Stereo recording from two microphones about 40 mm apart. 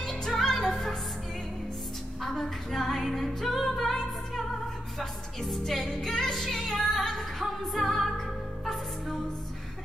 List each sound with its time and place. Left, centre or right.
0.0 s music: centre
2.2 s music: centre
4.9 s music: centre